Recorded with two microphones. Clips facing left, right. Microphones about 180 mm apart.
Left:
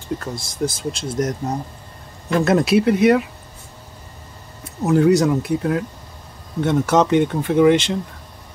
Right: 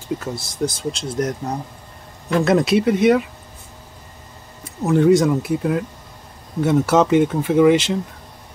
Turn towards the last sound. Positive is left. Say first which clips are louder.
# even
turn(degrees=0)  # may be behind; listen again after turning